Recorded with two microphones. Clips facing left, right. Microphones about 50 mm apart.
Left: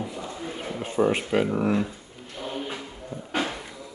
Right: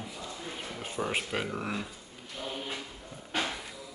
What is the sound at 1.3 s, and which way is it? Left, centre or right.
Speech, centre.